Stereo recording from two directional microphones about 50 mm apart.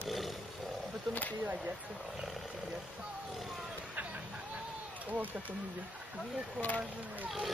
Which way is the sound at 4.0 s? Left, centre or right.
Right.